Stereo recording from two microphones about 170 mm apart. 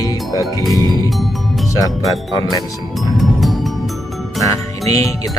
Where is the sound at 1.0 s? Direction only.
Centre (ahead or behind).